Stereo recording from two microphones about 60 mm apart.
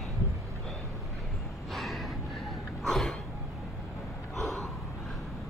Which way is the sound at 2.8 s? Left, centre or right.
Centre.